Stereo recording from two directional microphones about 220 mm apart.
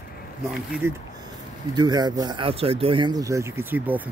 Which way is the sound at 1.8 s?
20° right (ahead or behind).